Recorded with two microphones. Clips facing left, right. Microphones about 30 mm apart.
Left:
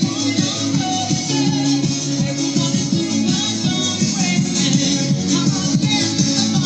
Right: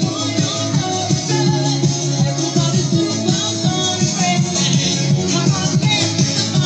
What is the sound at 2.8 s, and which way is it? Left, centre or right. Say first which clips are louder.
Music: right 1 dB; right.